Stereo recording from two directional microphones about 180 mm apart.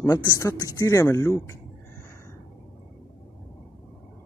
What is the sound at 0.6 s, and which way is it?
Speech, 20° left (ahead or behind).